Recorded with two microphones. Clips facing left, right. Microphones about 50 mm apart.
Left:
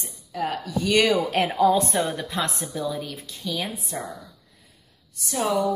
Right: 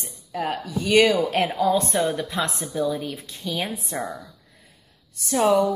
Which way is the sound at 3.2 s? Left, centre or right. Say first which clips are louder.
Right 1 dB; right.